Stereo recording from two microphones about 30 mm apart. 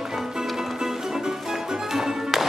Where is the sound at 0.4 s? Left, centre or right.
Centre.